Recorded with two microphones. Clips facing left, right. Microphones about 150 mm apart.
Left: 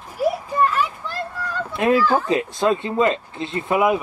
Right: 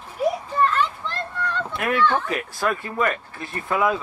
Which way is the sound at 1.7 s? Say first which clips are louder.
Left 9 dB; 25° left (ahead or behind).